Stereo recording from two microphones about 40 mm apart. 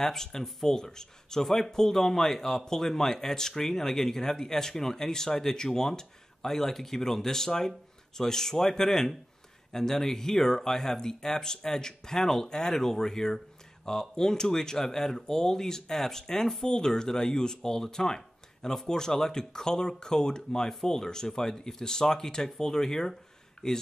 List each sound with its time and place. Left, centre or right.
0.0 s speech: centre